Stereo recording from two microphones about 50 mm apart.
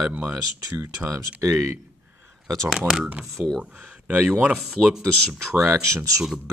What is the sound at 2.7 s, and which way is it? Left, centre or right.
Speech, centre.